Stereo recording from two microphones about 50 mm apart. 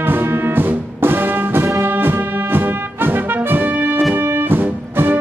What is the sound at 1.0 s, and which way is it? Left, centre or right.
Music, right.